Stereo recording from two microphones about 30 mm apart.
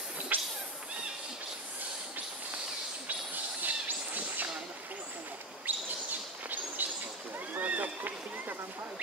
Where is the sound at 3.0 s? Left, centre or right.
Right.